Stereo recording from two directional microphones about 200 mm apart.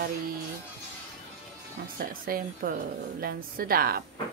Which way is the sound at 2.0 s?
45° right (ahead or behind).